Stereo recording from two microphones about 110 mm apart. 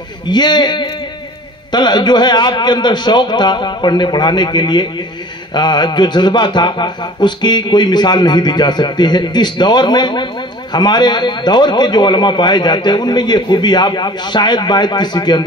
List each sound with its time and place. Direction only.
0.3 s a man's voice: 40° left (ahead or behind)